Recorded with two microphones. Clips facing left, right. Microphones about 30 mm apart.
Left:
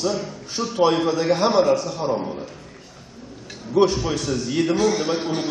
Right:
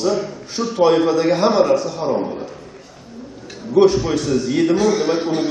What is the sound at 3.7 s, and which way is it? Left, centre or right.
A man's voice, centre.